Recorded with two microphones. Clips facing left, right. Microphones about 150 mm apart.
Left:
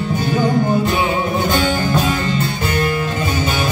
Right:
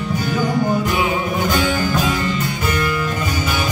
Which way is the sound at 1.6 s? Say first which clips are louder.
Left 1 dB; 25° left (ahead or behind).